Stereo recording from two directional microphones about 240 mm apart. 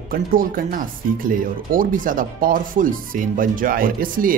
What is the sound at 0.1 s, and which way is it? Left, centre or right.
Speech, right.